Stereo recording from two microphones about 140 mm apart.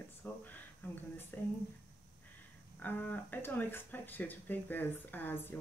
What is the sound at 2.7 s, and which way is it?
Speech, 10° left (ahead or behind).